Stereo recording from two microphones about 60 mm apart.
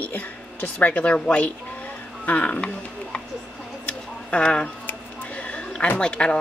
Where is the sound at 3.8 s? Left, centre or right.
Centre.